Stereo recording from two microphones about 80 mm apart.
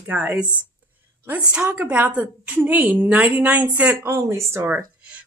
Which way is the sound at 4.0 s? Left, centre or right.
Right.